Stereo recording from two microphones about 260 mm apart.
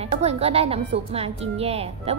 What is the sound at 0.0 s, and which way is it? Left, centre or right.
A woman's voice, right.